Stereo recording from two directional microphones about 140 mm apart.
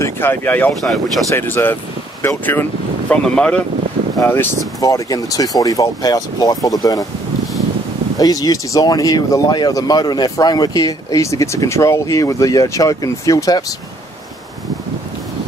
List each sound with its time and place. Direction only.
0.0 s speech: 15° left (ahead or behind)
8.2 s speech: 25° left (ahead or behind)